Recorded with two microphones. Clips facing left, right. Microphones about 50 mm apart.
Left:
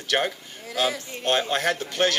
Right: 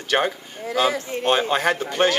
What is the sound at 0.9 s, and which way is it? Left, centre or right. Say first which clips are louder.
Speech: right 7 dB; right.